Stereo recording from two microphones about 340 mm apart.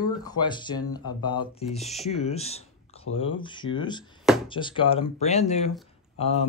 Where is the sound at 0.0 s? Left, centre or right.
Centre.